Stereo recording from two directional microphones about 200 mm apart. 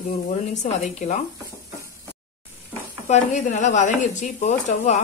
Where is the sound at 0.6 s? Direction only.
35° left (ahead or behind).